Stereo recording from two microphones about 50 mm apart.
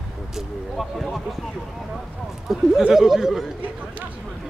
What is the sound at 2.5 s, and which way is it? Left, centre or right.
Speech, centre.